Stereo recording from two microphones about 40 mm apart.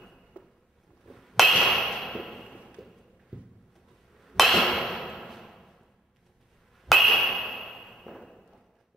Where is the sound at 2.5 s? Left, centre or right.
Right.